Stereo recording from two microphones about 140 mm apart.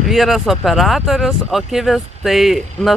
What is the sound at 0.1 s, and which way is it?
Speech, centre (ahead or behind).